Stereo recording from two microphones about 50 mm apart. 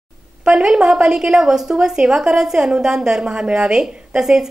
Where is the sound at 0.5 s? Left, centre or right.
Centre.